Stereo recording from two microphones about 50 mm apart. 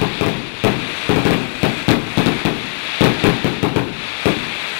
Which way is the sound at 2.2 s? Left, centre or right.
Centre.